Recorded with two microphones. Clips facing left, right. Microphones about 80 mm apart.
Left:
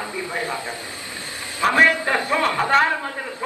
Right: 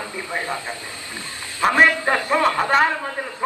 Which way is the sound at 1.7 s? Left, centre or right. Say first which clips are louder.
Right 1 dB; right.